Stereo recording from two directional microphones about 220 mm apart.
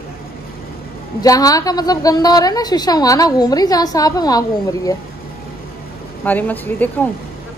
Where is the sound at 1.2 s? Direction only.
15° left (ahead or behind).